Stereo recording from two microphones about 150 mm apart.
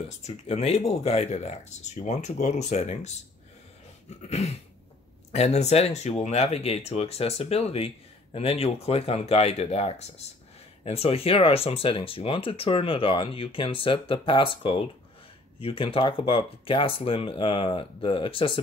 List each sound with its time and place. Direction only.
0.2 s speech: 45° left (ahead or behind)
4.3 s speech: 45° left (ahead or behind)